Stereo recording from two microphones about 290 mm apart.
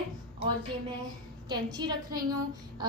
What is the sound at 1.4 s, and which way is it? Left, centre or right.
Speech, centre.